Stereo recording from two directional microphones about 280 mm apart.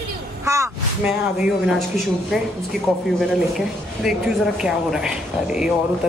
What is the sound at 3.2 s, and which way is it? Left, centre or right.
Speech, centre.